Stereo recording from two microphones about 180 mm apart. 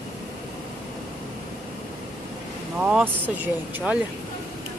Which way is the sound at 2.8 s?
5° right (ahead or behind).